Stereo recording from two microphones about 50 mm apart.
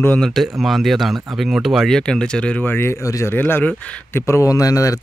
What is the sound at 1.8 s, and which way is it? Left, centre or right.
Speech, centre.